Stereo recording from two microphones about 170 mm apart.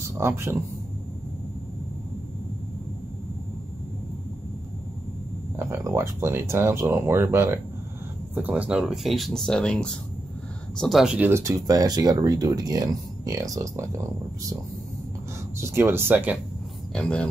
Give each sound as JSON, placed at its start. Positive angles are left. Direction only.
{"t": 0.2, "sound": "speech", "side_deg": -15}
{"t": 5.6, "sound": "speech", "side_deg": -15}
{"t": 15.6, "sound": "speech", "side_deg": -15}
{"t": 16.9, "sound": "speech", "side_deg": 5}